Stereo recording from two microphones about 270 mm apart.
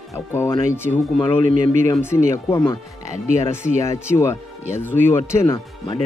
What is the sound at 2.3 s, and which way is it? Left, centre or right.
Speech, centre.